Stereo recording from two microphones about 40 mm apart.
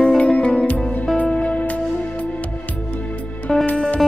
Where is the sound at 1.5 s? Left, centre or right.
Left.